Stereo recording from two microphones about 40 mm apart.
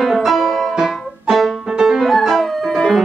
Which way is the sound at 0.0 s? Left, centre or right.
Centre.